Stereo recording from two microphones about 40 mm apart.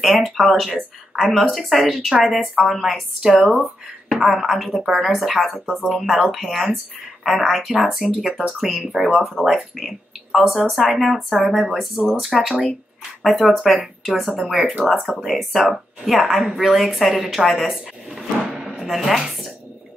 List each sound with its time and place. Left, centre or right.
0.0 s speech: centre
15.0 s speech: centre
15.3 s speech: centre
18.4 s a sound: centre
18.8 s speech: centre